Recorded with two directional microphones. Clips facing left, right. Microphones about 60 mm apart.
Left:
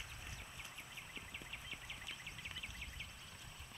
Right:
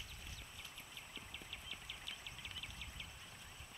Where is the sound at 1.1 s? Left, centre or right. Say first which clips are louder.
Left 1 dB; left.